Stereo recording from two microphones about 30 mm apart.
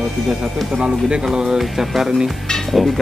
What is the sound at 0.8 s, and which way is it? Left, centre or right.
Speech, right.